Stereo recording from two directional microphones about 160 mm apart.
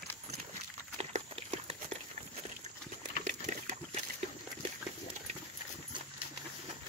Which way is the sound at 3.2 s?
50° right (ahead or behind).